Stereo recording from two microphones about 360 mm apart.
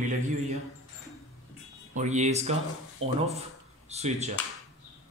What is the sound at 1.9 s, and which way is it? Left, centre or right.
Speech, centre.